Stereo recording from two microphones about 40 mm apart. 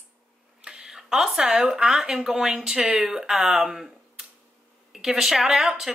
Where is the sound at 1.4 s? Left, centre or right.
Right.